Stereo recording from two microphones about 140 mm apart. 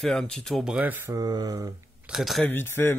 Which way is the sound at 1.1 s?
25° right (ahead or behind).